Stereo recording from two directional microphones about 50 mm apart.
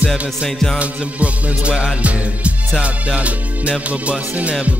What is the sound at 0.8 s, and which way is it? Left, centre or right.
Music, right.